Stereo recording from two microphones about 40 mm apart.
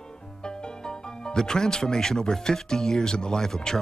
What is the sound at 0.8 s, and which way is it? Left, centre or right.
Speech, centre.